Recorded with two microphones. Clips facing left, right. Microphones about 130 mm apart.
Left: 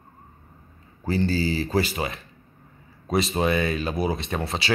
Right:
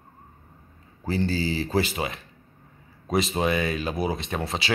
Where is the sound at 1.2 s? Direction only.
15° right (ahead or behind).